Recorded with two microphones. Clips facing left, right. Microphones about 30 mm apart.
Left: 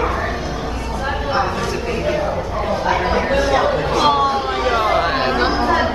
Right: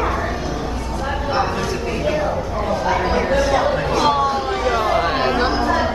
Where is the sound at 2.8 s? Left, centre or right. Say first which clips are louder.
Left 1 dB; centre.